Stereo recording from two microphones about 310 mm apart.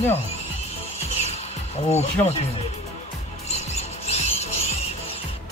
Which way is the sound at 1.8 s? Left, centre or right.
Left.